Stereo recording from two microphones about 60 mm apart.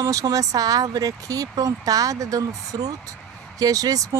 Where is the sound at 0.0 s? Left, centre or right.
Right.